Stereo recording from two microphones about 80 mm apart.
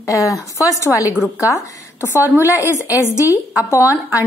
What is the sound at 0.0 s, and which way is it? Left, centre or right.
A woman's voice, left.